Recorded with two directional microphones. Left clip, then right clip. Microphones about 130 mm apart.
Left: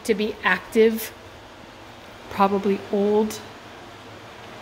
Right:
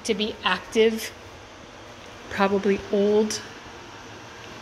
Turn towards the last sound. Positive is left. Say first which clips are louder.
# even
turn(degrees=20)  # may be behind; listen again after turning